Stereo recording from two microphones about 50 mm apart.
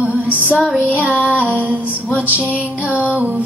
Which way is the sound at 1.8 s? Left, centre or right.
Left.